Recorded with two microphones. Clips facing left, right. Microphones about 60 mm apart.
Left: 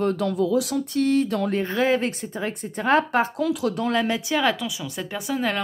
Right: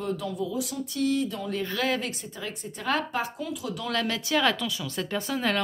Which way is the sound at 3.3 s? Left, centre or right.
Left.